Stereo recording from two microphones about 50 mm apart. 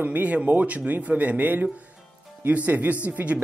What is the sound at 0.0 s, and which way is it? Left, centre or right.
Speech, right.